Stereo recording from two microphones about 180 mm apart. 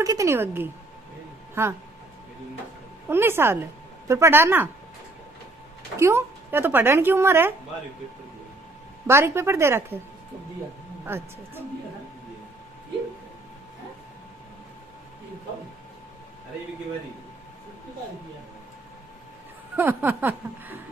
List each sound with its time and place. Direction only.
0.0 s speech: 20° right (ahead or behind)
3.1 s speech: 15° right (ahead or behind)
5.9 s speech: 15° right (ahead or behind)
9.0 s speech: 15° right (ahead or behind)
11.1 s speech: 10° right (ahead or behind)
19.7 s speech: 10° right (ahead or behind)